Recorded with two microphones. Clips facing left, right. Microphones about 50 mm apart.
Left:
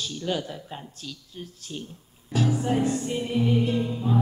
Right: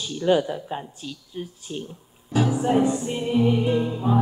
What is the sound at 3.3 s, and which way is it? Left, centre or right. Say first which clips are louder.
Music: right 4 dB; centre.